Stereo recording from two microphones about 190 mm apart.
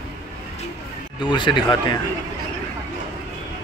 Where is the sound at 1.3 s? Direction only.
25° left (ahead or behind).